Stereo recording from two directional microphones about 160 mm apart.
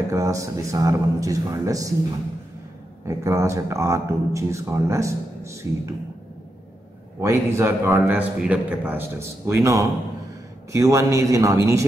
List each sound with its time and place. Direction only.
0.1 s speech: 20° right (ahead or behind)
3.1 s speech: 20° right (ahead or behind)
7.2 s a man's voice: 15° right (ahead or behind)